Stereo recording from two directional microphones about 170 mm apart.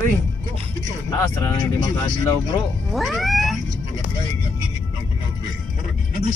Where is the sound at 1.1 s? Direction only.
20° left (ahead or behind).